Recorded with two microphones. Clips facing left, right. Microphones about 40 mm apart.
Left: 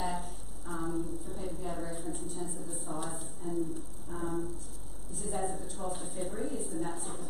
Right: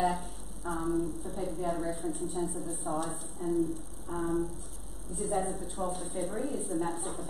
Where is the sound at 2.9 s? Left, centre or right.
Right.